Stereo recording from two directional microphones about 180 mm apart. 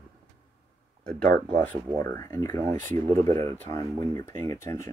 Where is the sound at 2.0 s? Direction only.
15° left (ahead or behind).